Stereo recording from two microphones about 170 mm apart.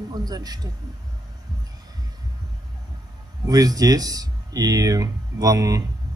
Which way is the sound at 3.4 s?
20° right (ahead or behind).